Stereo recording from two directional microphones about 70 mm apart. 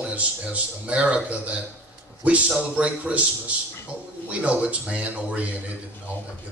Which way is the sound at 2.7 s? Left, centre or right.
Centre.